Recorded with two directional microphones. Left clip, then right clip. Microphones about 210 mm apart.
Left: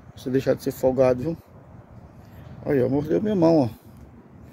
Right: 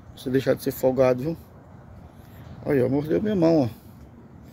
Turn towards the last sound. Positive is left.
turn(degrees=15)  # may be behind; listen again after turning